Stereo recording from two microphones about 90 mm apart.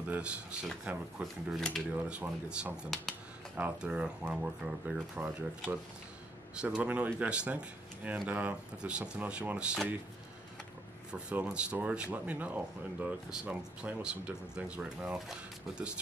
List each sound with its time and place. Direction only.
0.1 s speech: 10° right (ahead or behind)
1.2 s speech: 5° left (ahead or behind)
2.0 s speech: 15° right (ahead or behind)
6.5 s speech: 10° right (ahead or behind)
11.1 s speech: 10° right (ahead or behind)